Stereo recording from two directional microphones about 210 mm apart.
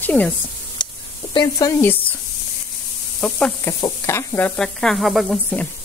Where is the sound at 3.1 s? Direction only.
5° left (ahead or behind).